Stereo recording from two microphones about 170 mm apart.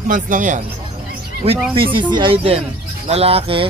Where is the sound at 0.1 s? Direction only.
50° right (ahead or behind).